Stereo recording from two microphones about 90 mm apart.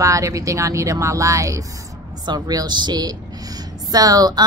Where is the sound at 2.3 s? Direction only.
45° right (ahead or behind).